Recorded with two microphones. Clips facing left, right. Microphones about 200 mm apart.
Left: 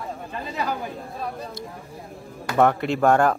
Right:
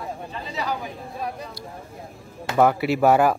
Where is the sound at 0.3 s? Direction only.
50° left (ahead or behind).